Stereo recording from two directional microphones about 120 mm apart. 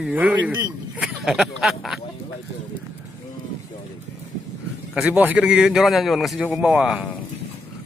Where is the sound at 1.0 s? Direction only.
5° right (ahead or behind).